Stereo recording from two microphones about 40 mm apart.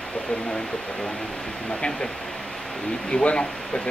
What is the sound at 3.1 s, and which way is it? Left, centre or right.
Speech, left.